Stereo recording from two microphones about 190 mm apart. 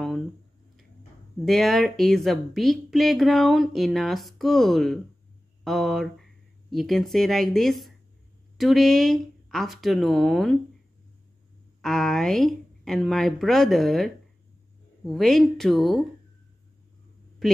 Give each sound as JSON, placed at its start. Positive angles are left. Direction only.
{"t": 1.4, "sound": "a woman's voice", "side_deg": 0}
{"t": 11.8, "sound": "a woman's voice", "side_deg": 0}